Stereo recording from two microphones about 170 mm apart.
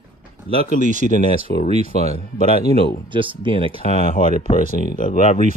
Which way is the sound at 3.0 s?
30° right (ahead or behind).